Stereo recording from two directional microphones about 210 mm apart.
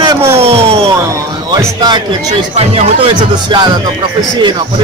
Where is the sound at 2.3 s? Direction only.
25° right (ahead or behind).